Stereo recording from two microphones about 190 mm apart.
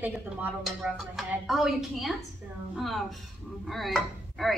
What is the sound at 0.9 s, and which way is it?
Chopping, centre (ahead or behind).